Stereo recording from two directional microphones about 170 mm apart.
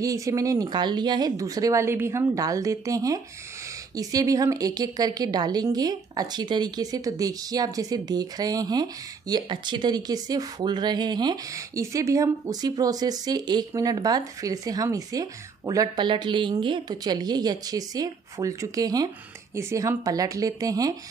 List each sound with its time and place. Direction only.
0.0 s a woman's voice: 20° right (ahead or behind)